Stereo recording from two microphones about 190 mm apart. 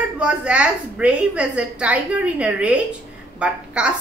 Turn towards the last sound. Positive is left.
turn(degrees=-5)  # may be behind; listen again after turning